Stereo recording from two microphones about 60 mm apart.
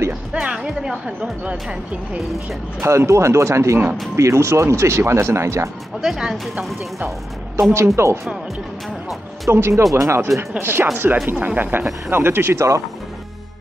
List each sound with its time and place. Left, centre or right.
0.4 s a woman's voice: centre
2.8 s speech: right
5.9 s a woman's voice: centre
7.7 s speech: right
9.5 s speech: right
10.6 s speech: right
11.2 s speech: right